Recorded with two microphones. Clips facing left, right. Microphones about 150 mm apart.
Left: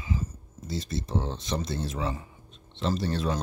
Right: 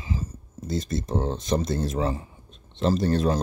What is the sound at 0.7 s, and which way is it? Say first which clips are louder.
A man's voice: right 4 dB; 45° right (ahead or behind).